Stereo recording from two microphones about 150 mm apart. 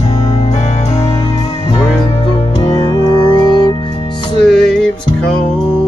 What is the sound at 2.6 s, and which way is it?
Music, 30° left (ahead or behind).